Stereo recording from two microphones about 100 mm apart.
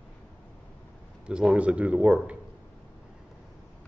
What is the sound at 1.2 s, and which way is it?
A man's voice, 10° right (ahead or behind).